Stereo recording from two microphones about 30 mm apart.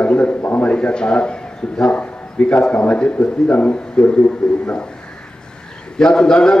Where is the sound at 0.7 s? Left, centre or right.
Left.